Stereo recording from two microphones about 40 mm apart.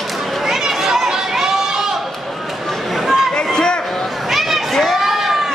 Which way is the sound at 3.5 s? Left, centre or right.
Centre.